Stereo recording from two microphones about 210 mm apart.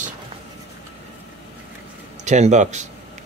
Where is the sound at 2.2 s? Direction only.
35° right (ahead or behind).